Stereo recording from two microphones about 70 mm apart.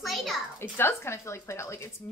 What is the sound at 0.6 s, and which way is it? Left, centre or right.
Speech, left.